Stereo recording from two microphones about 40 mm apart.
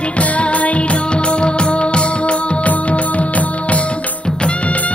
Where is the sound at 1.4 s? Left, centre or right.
Left.